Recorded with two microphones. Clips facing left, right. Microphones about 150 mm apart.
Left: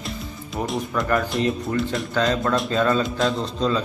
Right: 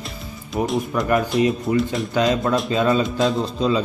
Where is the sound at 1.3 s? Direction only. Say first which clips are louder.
Right 4 dB; 5° right (ahead or behind).